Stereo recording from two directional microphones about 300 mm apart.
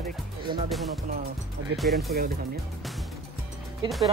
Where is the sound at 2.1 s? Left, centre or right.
Right.